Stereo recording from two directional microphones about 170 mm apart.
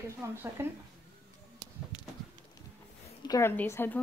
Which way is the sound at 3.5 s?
10° left (ahead or behind).